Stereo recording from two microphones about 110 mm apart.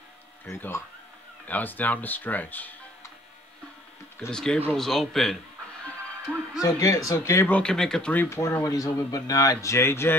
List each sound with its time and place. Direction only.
0.6 s speech: 20° left (ahead or behind)
4.3 s speech: 5° left (ahead or behind)
6.6 s speech: 30° left (ahead or behind)
7.5 s speech: 10° left (ahead or behind)